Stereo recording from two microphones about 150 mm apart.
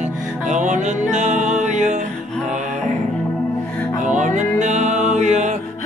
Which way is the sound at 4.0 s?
55° right (ahead or behind).